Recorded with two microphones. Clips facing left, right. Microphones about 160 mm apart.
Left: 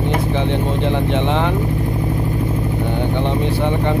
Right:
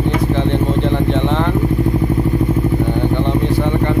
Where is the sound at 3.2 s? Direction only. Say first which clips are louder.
Right 3 dB; 20° left (ahead or behind).